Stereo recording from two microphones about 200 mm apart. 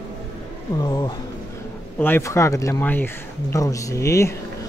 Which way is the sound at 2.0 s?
10° left (ahead or behind).